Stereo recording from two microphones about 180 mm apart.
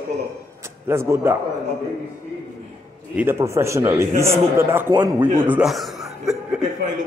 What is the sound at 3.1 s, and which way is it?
A man's voice, 10° right (ahead or behind).